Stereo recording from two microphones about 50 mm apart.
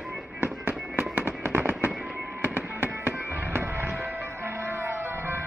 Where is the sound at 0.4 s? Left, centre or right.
Right.